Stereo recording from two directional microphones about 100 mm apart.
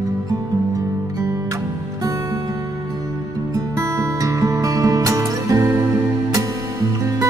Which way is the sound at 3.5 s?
30° right (ahead or behind).